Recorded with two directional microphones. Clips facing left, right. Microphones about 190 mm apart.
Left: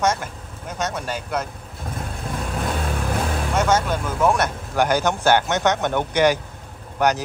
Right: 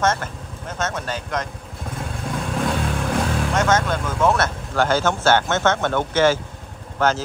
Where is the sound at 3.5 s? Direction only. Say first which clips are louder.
Left 1 dB; 10° left (ahead or behind).